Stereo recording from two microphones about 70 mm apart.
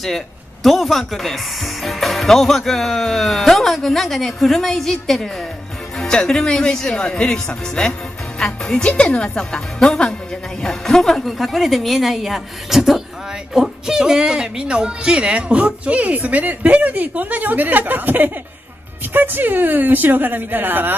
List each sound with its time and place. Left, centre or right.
0.0 s speech: centre; by 20.9 s right